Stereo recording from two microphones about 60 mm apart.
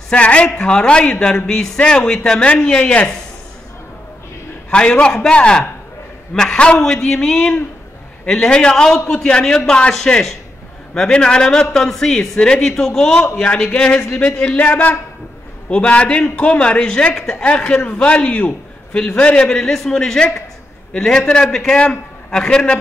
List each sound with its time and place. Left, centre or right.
0.1 s speech: centre
4.6 s a man's voice: centre